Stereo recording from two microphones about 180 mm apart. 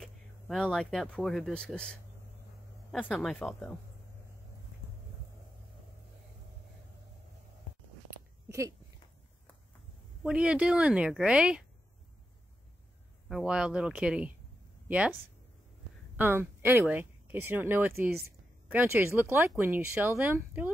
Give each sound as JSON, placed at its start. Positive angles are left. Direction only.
{"t": 0.0, "sound": "a woman's voice", "side_deg": 5}
{"t": 8.5, "sound": "a sound", "side_deg": -15}
{"t": 10.2, "sound": "a woman's voice", "side_deg": -5}
{"t": 13.3, "sound": "a woman's voice", "side_deg": -5}
{"t": 16.2, "sound": "speech", "side_deg": -10}